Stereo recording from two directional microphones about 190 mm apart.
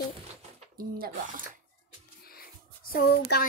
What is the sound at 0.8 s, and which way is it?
Speech, 50° right (ahead or behind).